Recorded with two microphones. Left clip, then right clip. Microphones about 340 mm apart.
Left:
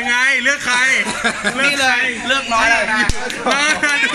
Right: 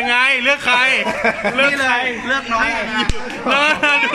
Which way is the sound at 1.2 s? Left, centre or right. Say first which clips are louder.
Right 1 dB; centre.